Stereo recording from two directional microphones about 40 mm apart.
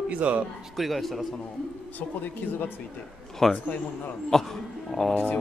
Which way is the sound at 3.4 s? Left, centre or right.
Centre.